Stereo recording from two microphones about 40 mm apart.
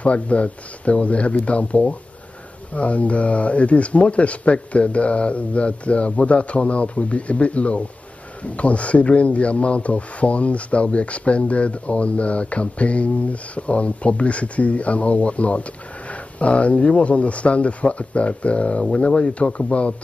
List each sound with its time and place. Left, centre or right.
0.0 s speech: left